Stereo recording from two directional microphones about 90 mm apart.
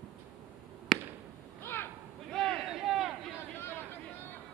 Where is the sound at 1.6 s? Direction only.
25° left (ahead or behind).